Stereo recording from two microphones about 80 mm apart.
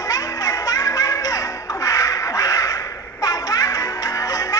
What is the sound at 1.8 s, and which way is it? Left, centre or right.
Quack, left.